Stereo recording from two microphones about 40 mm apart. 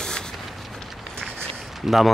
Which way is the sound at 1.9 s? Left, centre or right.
Centre.